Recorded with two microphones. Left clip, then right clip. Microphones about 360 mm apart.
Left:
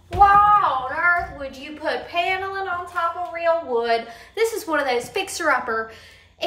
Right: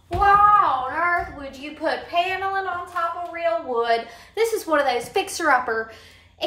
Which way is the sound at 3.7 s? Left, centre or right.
Centre.